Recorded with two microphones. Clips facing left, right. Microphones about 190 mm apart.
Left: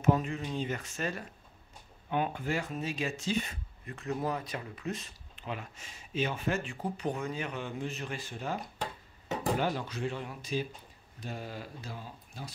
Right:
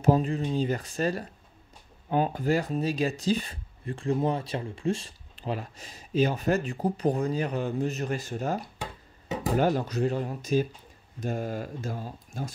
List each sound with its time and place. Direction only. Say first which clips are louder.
0.0 s speech: right 5 dB; 35° right (ahead or behind)